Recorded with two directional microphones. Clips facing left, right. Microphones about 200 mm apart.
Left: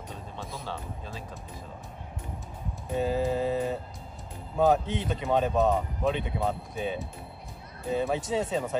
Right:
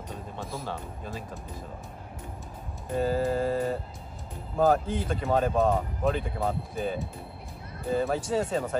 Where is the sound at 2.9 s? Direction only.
Centre (ahead or behind).